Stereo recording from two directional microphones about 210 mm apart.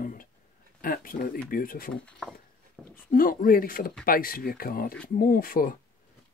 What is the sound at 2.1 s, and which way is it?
Speech, centre (ahead or behind).